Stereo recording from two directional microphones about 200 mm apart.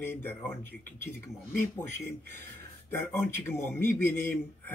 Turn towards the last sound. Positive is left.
turn(degrees=10)  # may be behind; listen again after turning